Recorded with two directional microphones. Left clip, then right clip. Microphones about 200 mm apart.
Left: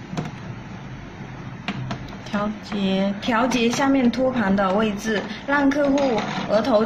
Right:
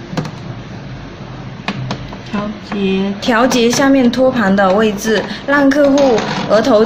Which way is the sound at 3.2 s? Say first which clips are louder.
Right 10 dB; 20° right (ahead or behind).